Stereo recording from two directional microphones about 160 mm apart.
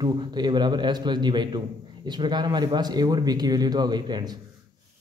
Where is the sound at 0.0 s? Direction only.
25° right (ahead or behind).